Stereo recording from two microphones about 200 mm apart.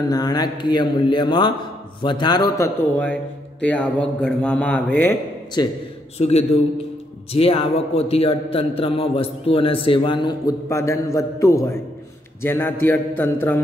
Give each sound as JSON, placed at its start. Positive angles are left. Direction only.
{"t": 0.1, "sound": "a man's voice", "side_deg": 20}
{"t": 5.6, "sound": "a man's voice", "side_deg": 20}
{"t": 6.1, "sound": "a man's voice", "side_deg": 30}